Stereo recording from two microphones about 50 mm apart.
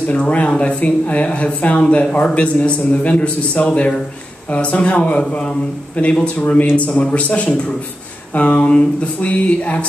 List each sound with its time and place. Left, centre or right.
0.0 s a man's voice: left